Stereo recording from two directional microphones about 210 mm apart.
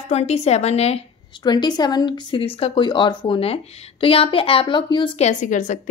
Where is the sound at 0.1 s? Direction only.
30° left (ahead or behind).